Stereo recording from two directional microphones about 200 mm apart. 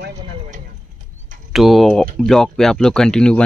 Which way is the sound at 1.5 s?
Centre (ahead or behind).